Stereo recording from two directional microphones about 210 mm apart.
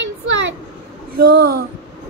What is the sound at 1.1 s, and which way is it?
Child singing, 50° right (ahead or behind).